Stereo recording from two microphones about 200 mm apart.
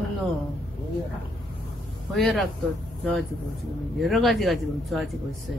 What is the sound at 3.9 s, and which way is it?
Speech, centre (ahead or behind).